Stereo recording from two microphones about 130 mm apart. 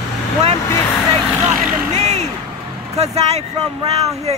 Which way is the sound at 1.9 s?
60° right (ahead or behind).